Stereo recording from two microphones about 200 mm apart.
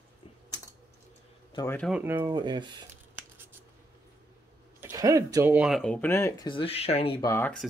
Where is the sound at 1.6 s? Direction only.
10° left (ahead or behind).